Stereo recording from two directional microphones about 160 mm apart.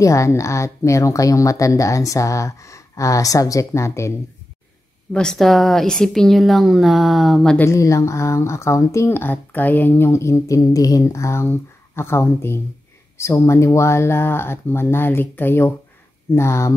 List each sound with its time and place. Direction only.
0.0 s a woman's voice: 20° left (ahead or behind)
5.1 s a woman's voice: 5° left (ahead or behind)
7.6 s speech: 20° left (ahead or behind)